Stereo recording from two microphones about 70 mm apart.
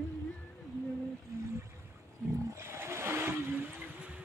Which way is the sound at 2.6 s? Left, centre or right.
Right.